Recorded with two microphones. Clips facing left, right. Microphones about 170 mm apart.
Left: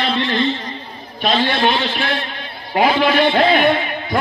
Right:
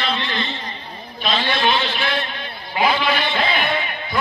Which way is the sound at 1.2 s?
45° left (ahead or behind).